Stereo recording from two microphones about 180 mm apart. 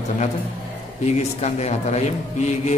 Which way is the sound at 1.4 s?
40° left (ahead or behind).